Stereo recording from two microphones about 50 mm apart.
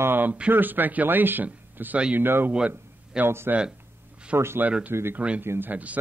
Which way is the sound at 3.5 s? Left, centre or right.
Right.